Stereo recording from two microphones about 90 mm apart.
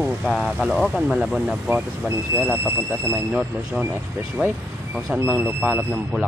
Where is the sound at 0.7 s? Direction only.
Centre (ahead or behind).